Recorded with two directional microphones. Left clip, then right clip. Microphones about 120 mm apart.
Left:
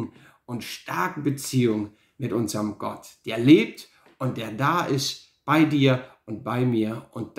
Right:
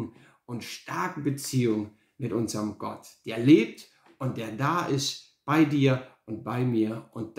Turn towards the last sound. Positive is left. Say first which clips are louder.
# left 3 dB
turn(degrees=30)  # may be behind; listen again after turning